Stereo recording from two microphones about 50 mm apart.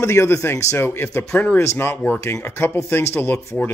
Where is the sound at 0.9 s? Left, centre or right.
Left.